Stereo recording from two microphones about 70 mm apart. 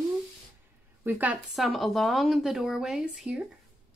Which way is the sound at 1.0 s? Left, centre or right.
Right.